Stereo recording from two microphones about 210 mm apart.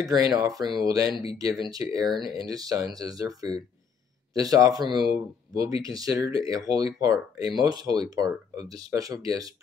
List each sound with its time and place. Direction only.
0.0 s speech: 15° right (ahead or behind)